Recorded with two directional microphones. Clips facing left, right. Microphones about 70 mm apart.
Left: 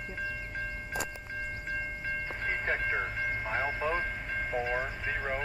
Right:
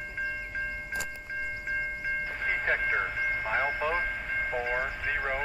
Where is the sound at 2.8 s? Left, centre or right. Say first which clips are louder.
Right 3 dB; right.